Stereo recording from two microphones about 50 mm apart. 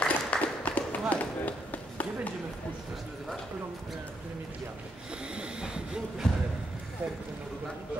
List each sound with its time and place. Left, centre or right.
0.0 s run: left
5.3 s speech: centre